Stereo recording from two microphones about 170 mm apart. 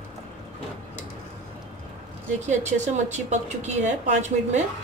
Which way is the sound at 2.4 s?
45° right (ahead or behind).